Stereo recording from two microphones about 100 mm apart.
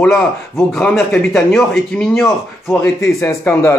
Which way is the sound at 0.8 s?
15° left (ahead or behind).